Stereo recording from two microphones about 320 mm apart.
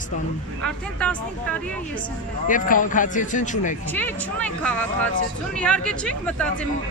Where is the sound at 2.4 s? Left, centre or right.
Left.